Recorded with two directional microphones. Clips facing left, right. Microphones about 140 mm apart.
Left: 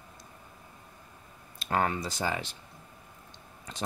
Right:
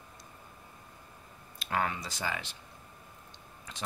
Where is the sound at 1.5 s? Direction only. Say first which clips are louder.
Left 4 dB; 40° left (ahead or behind).